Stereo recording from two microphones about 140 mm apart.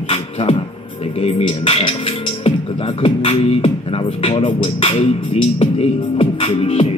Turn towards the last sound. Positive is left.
turn(degrees=45)  # may be behind; listen again after turning